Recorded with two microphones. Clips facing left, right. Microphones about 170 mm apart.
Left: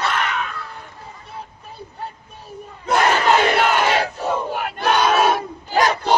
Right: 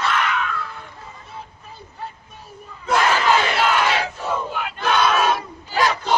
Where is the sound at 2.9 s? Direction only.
45° left (ahead or behind).